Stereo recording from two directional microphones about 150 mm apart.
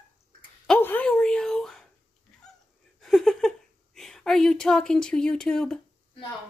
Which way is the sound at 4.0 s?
Centre (ahead or behind).